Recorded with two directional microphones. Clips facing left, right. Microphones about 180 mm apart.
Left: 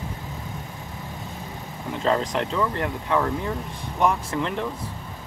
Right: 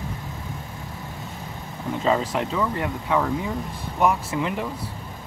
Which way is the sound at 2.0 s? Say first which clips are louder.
Even; 5° right (ahead or behind).